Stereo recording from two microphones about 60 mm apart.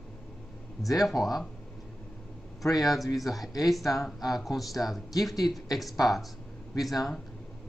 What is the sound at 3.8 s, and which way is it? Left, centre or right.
Speech, left.